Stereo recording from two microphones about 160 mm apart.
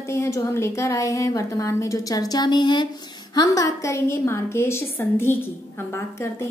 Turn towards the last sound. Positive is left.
turn(degrees=15)  # may be behind; listen again after turning